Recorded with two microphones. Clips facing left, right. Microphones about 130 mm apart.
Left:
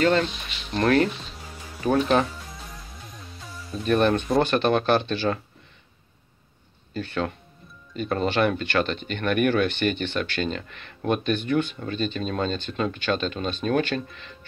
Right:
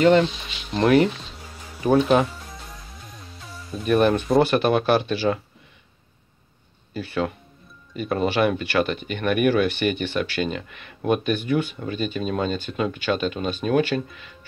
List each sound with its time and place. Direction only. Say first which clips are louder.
0.0 s speech: right 5 dB; 15° right (ahead or behind)
3.3 s speech: right 1 dB; 5° right (ahead or behind)
6.9 s speech: right 2 dB; 10° right (ahead or behind)